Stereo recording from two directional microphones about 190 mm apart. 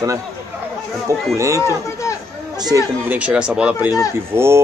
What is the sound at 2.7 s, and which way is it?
A man's voice, 10° right (ahead or behind).